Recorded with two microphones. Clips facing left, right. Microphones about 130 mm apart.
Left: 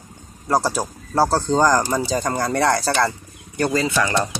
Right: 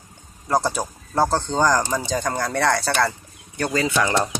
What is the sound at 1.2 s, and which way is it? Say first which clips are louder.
Speech: left 3 dB; 5° left (ahead or behind).